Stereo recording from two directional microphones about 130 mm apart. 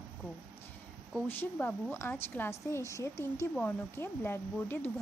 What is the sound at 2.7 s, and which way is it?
A woman's voice, 25° left (ahead or behind).